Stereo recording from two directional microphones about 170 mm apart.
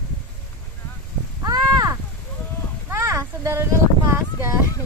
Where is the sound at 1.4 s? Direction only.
20° right (ahead or behind).